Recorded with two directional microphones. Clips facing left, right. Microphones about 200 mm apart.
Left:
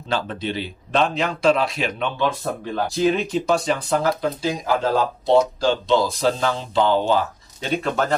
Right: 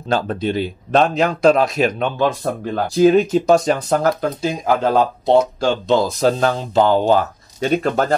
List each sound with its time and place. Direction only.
0.1 s speech: 45° right (ahead or behind)